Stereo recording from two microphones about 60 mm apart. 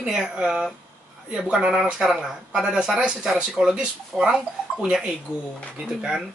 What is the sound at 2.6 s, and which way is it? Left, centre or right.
A woman's voice, centre.